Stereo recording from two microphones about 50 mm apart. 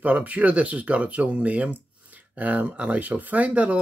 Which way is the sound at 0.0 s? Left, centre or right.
Right.